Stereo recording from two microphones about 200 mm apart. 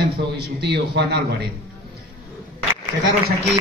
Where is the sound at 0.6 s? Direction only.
55° right (ahead or behind).